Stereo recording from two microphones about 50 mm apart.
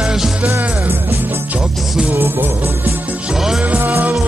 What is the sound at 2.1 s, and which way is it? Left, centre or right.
Music, right.